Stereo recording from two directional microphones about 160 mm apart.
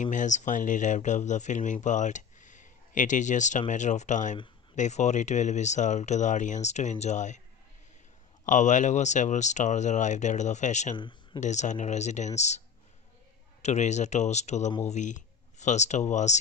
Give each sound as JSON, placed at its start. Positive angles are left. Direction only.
{"t": 0.0, "sound": "speech", "side_deg": 50}
{"t": 8.5, "sound": "speech", "side_deg": 50}